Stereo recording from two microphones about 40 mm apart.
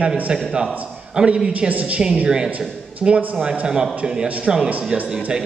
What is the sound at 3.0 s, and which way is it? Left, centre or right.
Speech, right.